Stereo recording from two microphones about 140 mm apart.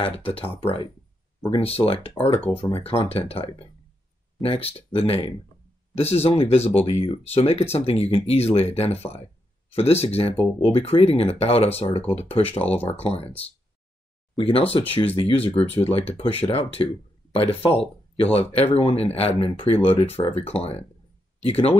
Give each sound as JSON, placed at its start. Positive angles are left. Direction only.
{"t": 0.0, "sound": "speech", "side_deg": 40}
{"t": 12.6, "sound": "speech", "side_deg": 10}
{"t": 12.9, "sound": "speech", "side_deg": 45}
{"t": 14.3, "sound": "speech", "side_deg": 40}